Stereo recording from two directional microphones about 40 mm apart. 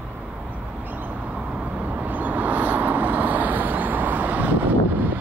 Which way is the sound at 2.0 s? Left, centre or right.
Right.